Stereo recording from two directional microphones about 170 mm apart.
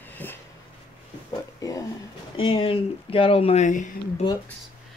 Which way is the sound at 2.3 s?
30° left (ahead or behind).